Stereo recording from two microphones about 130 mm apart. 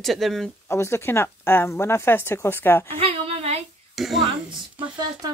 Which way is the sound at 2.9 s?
45° right (ahead or behind).